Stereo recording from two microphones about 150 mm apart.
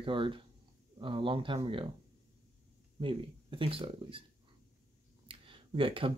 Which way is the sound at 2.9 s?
35° right (ahead or behind).